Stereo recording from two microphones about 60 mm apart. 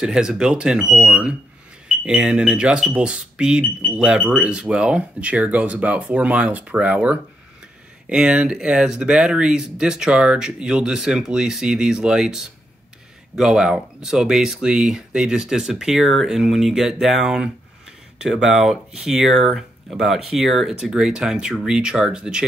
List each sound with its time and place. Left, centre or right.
0.0 s speech: centre